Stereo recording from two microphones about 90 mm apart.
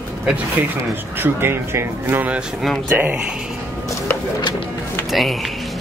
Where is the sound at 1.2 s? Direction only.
25° right (ahead or behind).